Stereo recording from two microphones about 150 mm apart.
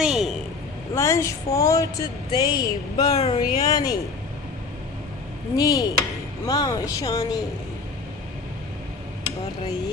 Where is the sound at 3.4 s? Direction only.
25° left (ahead or behind).